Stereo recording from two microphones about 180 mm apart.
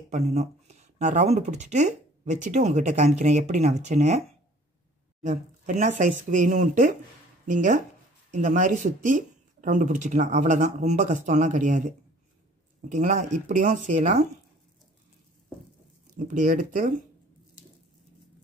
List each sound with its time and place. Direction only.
0.1 s speech: 35° right (ahead or behind)
5.2 s speech: 40° right (ahead or behind)
16.2 s speech: 45° right (ahead or behind)